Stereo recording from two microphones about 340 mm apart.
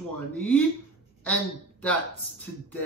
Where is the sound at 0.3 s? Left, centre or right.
Centre.